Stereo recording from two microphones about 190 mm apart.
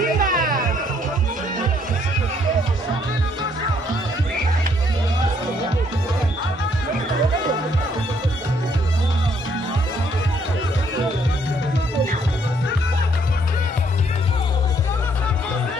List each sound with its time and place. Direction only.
0.0 s music: 45° right (ahead or behind)